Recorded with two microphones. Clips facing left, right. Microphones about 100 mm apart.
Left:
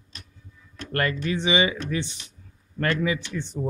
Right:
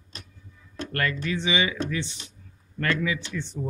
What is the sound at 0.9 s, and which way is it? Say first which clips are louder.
Speech: left 3 dB; 35° left (ahead or behind).